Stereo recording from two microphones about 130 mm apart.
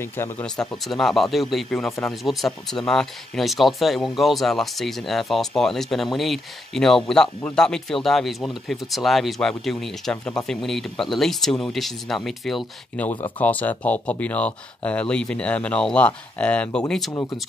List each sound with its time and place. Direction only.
0.0 s speech: 20° left (ahead or behind)
0.6 s speech: 5° left (ahead or behind)